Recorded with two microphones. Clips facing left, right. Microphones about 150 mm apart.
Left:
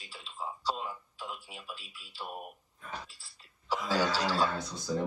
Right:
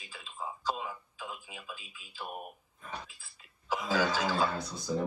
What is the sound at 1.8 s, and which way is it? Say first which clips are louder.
Speech: left 1 dB; 90° left.